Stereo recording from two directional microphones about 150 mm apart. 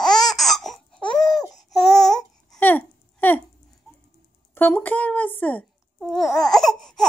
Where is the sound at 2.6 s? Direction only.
10° left (ahead or behind).